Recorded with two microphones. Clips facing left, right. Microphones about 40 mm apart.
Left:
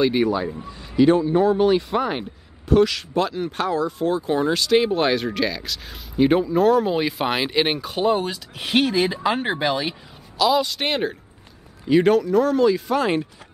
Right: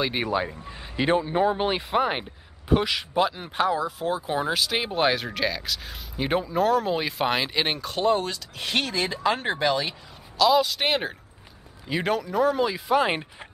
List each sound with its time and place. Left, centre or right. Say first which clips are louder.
0.1 s speech: left 5 dB; centre